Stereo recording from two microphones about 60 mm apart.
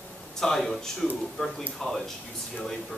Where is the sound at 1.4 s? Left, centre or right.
Centre.